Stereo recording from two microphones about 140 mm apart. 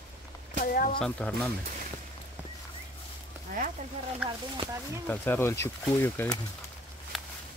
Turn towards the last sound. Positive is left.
turn(degrees=15)  # may be behind; listen again after turning